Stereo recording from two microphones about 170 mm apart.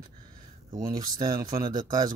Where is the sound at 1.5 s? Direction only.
25° right (ahead or behind).